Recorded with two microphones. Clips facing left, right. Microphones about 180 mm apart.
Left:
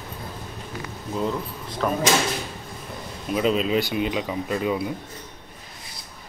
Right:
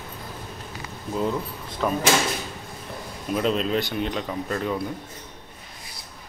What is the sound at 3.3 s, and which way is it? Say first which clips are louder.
Speech: left 2 dB; 5° left (ahead or behind).